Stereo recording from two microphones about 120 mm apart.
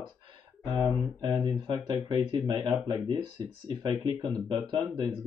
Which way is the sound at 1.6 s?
35° right (ahead or behind).